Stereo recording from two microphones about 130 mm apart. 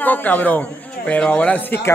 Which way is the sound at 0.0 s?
15° left (ahead or behind).